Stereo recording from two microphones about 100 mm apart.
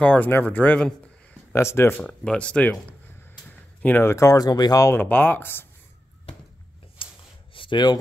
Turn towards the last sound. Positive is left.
turn(degrees=50)  # may be behind; listen again after turning